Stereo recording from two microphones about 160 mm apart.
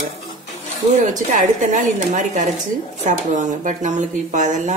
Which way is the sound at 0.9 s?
50° right (ahead or behind).